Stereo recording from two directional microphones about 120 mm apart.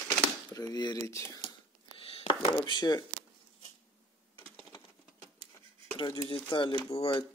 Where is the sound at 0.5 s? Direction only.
35° left (ahead or behind).